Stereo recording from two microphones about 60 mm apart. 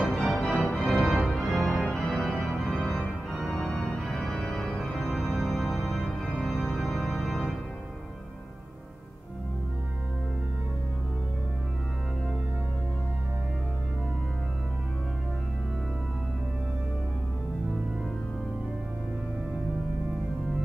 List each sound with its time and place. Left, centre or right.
0.0 s music: centre
0.5 s organ: centre
0.8 s organ: centre
5.2 s music: centre
6.4 s organ: centre